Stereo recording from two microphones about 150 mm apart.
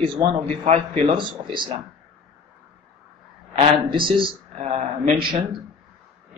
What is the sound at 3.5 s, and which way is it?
Speech, 40° right (ahead or behind).